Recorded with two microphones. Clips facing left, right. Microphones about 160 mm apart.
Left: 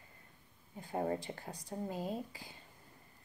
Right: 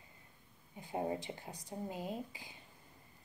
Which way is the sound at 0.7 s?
15° right (ahead or behind).